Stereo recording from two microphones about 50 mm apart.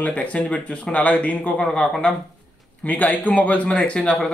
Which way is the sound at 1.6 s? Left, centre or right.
Centre.